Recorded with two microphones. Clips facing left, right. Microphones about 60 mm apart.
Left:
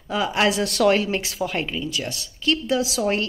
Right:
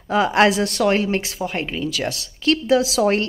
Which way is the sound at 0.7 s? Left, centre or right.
Right.